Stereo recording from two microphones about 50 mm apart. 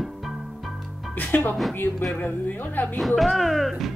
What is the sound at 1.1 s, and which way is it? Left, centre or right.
Speech, left.